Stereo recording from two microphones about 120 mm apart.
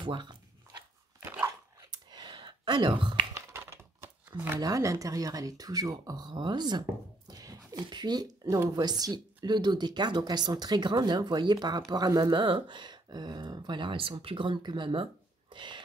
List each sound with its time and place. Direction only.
0.0 s speech: 40° right (ahead or behind)
1.8 s a sound: 35° right (ahead or behind)
3.3 s computer keyboard: 20° right (ahead or behind)
4.3 s speech: 30° right (ahead or behind)